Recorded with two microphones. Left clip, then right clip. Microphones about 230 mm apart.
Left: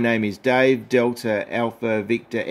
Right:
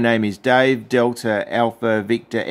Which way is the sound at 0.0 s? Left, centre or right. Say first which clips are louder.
Right 3 dB; centre.